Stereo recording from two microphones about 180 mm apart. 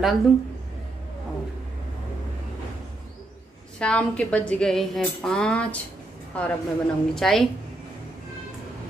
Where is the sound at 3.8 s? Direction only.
5° left (ahead or behind).